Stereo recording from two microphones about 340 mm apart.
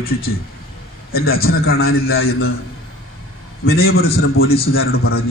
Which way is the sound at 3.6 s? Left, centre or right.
Left.